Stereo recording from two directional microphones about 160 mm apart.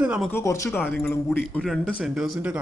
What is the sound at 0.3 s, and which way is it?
A man's voice, 20° left (ahead or behind).